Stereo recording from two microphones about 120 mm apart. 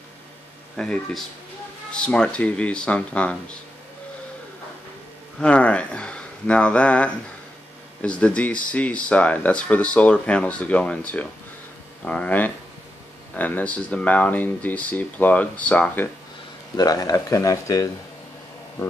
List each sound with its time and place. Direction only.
0.7 s speech: 5° left (ahead or behind)
5.4 s speech: 10° left (ahead or behind)
16.7 s speech: 30° left (ahead or behind)